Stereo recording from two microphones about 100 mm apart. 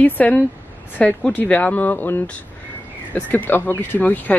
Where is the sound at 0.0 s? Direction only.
15° left (ahead or behind).